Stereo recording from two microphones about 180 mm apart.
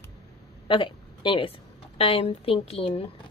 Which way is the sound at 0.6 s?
30° left (ahead or behind).